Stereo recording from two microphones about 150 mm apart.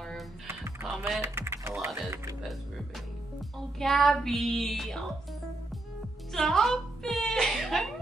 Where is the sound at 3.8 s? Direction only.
Centre (ahead or behind).